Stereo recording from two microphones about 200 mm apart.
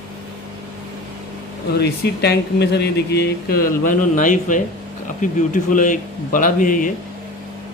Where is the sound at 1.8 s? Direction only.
55° left (ahead or behind).